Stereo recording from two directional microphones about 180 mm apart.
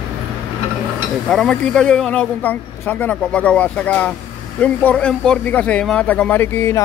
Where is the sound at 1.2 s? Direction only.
Centre (ahead or behind).